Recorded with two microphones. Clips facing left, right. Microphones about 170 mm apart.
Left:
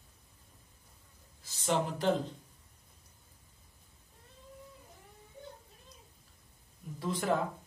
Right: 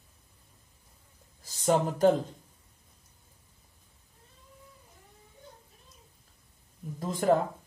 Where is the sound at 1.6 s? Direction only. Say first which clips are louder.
Right 8 dB; 45° right (ahead or behind).